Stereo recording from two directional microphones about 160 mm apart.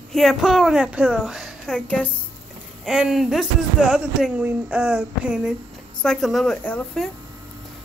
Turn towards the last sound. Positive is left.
turn(degrees=5)  # may be behind; listen again after turning